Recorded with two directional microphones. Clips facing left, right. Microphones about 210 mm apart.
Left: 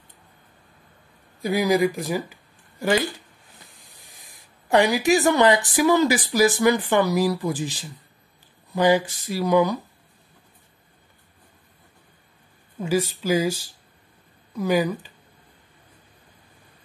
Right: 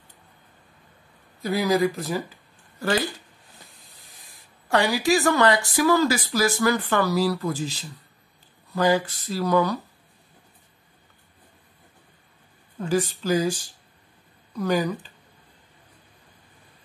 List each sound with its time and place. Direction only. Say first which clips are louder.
1.4 s speech: left 2 dB; 15° left (ahead or behind)
4.2 s speech: left 1 dB; 20° left (ahead or behind)
12.7 s speech: left 1 dB; 10° left (ahead or behind)